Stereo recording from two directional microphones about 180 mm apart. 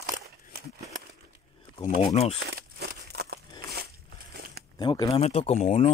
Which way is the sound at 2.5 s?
65° right (ahead or behind).